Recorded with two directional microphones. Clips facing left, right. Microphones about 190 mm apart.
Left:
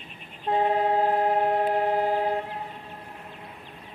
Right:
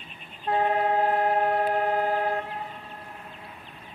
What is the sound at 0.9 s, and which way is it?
Train, 15° left (ahead or behind).